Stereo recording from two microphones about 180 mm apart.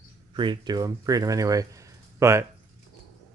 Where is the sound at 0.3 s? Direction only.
25° right (ahead or behind).